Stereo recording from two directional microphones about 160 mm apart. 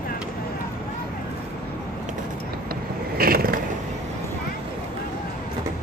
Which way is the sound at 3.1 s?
65° right (ahead or behind).